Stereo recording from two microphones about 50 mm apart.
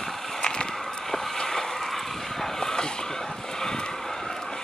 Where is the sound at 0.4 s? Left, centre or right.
Centre.